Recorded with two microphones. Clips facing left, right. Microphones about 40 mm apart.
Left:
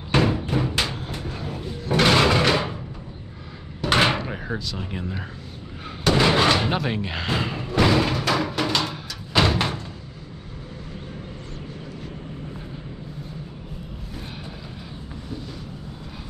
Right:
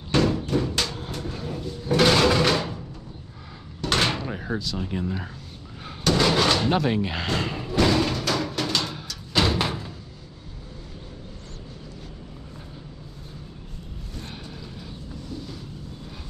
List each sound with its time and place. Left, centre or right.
0.1 s a sound: centre
1.0 s vehicle: centre
1.6 s a sound: left
3.8 s door: centre
4.6 s speech: centre
6.0 s door: left
6.7 s music: centre